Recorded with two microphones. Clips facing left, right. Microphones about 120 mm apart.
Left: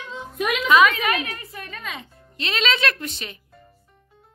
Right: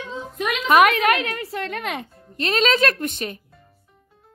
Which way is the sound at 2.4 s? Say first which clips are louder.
Right 5 dB; 45° right (ahead or behind).